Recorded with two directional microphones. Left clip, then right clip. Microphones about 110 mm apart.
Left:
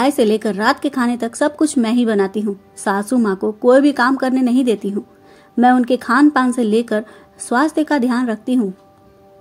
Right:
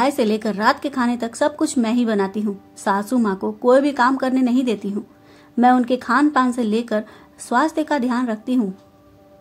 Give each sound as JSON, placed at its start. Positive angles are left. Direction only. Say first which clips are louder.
{"t": 0.0, "sound": "a woman's voice", "louder": "left 4 dB", "side_deg": 40}